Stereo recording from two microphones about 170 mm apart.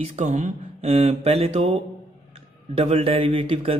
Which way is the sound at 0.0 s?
45° right (ahead or behind).